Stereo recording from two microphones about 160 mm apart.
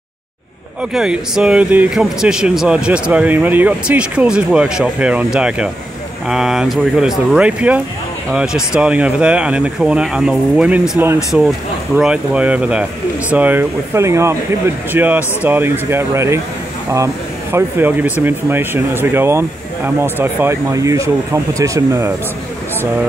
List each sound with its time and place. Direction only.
0.9 s speech: 5° right (ahead or behind)